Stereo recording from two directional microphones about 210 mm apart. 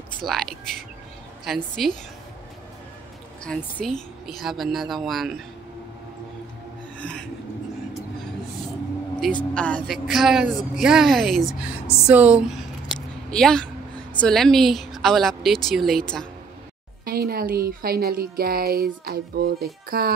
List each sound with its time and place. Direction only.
0.2 s speech: centre (ahead or behind)
3.4 s speech: 5° left (ahead or behind)
7.0 s a sound: 5° left (ahead or behind)
9.2 s speech: 5° left (ahead or behind)
17.0 s a woman's voice: 45° right (ahead or behind)